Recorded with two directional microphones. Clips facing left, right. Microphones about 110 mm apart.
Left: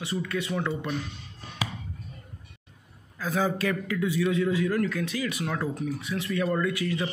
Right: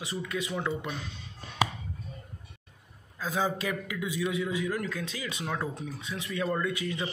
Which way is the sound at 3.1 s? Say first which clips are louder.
Left 3 dB; 15° right (ahead or behind).